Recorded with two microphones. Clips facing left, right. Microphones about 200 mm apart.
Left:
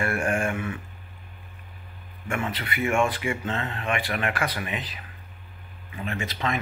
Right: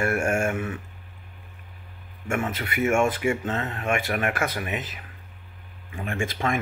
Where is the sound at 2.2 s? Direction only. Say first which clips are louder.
Right 2 dB; 45° right (ahead or behind).